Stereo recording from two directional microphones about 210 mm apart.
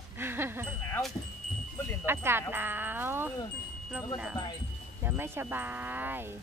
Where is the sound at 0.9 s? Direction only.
Centre (ahead or behind).